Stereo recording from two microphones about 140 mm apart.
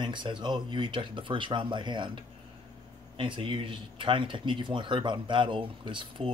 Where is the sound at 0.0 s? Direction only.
35° right (ahead or behind).